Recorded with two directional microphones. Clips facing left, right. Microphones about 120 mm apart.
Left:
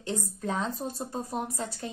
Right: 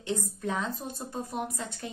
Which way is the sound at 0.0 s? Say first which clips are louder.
Right 1 dB; 35° left (ahead or behind).